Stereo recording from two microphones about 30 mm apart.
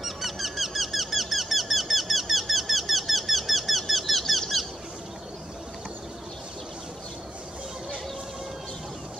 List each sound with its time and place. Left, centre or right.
0.0 s squeak: centre